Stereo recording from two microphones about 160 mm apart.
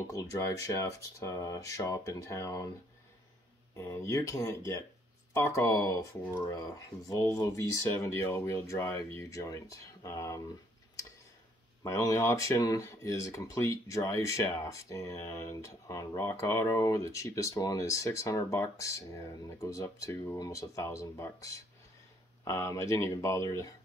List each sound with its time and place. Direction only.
0.1 s speech: 20° left (ahead or behind)
3.7 s speech: 20° left (ahead or behind)
11.8 s speech: 20° left (ahead or behind)